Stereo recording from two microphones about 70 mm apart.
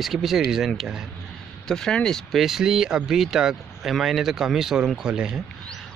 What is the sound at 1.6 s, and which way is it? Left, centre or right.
Speech, centre.